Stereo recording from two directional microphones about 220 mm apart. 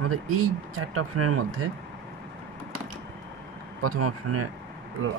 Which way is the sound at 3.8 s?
80° right.